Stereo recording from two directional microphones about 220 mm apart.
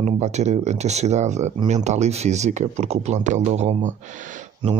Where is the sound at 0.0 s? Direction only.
30° right (ahead or behind).